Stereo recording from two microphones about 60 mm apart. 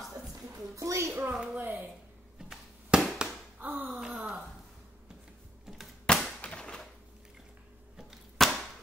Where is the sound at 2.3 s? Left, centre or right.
Centre.